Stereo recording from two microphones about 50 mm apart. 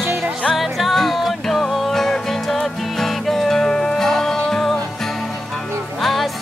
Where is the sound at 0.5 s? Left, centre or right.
Centre.